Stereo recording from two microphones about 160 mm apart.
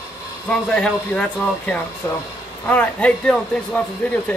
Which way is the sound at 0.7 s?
5° left (ahead or behind).